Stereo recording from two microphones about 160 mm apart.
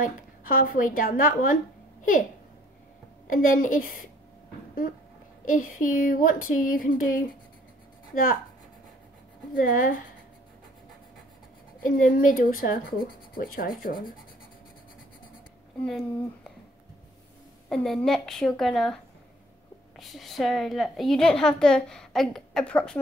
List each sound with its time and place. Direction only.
0.0 s speech: 60° left (ahead or behind)
3.3 s speech: 60° left (ahead or behind)
5.4 s speech: 55° left (ahead or behind)
9.6 s speech: 60° left (ahead or behind)
11.8 s speech: 60° left (ahead or behind)
17.6 s a woman's voice: centre (ahead or behind)
20.0 s a woman's voice: centre (ahead or behind)